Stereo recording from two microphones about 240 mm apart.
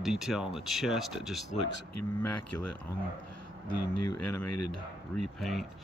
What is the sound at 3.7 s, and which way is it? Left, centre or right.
Speech, left.